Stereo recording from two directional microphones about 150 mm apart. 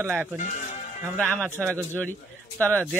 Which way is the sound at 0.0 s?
10° right (ahead or behind).